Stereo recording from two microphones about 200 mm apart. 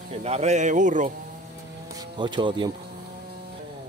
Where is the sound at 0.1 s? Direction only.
30° right (ahead or behind).